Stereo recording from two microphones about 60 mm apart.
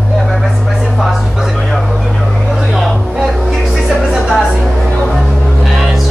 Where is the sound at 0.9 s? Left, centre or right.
Centre.